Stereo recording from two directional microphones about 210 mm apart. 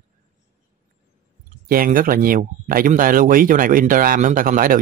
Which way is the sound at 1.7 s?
45° right (ahead or behind).